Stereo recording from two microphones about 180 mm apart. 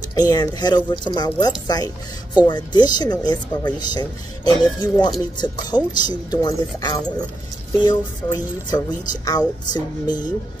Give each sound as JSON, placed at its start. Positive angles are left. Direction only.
{"t": 0.1, "sound": "speech", "side_deg": 20}